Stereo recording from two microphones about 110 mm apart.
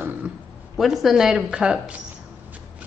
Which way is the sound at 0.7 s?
Centre (ahead or behind).